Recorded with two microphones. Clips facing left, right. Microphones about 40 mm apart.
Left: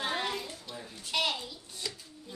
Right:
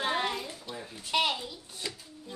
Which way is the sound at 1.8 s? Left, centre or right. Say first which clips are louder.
Right 1 dB; right.